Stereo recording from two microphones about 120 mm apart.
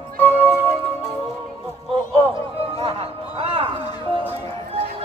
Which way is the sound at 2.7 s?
55° right (ahead or behind).